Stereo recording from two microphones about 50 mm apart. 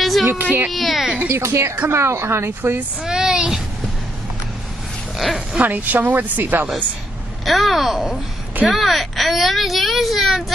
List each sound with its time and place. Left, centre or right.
0.0 s a sound: centre
0.3 s a woman's voice: right
0.7 s speech: centre
1.0 s speech: centre
1.3 s a woman's voice: right
3.0 s a sound: centre
5.1 s speech: centre
5.6 s a woman's voice: right
7.4 s speech: centre